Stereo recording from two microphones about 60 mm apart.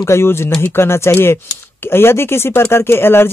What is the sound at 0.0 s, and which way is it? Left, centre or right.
Speech, left.